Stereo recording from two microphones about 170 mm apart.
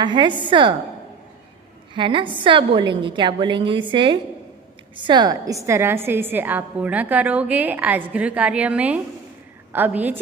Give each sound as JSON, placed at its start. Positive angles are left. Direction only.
{"t": 0.0, "sound": "a woman's voice", "side_deg": -25}
{"t": 2.0, "sound": "a woman's voice", "side_deg": -30}